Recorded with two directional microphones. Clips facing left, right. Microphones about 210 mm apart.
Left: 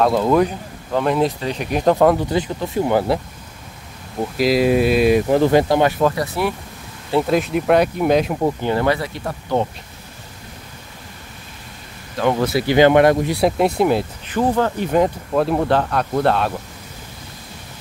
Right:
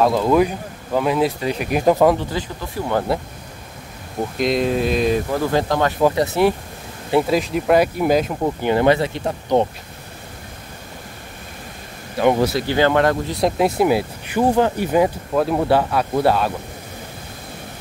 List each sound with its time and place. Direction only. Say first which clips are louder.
0.0 s speech: even; centre (ahead or behind)
2.3 s speech: left 6 dB; 20° left (ahead or behind)
4.4 s speech: left 4 dB; 5° left (ahead or behind)
5.3 s speech: left 6 dB; 25° left (ahead or behind)
5.6 s speech: left 4 dB; 10° left (ahead or behind)
6.1 s speech: right 5 dB; 25° right (ahead or behind)
7.1 s speech: right 1 dB; 10° right (ahead or behind)
7.3 s speech: left 2 dB; centre (ahead or behind)
8.6 s speech: right 3 dB; 20° right (ahead or behind)
12.2 s speech: right 2 dB; 15° right (ahead or behind)
12.5 s speech: left 4 dB; 15° left (ahead or behind)
13.6 s speech: even; 5° right (ahead or behind)